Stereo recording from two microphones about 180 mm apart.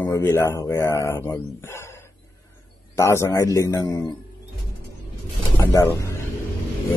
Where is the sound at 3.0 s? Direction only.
15° left (ahead or behind).